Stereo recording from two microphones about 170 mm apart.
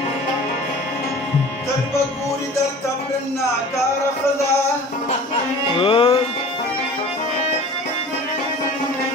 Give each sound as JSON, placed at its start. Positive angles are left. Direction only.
{"t": 5.8, "sound": "music", "side_deg": 30}